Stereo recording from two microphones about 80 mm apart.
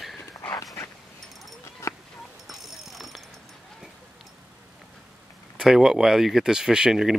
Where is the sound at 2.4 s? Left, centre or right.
Centre.